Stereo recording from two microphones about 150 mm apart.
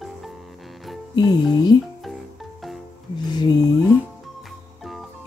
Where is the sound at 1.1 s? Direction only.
30° left (ahead or behind).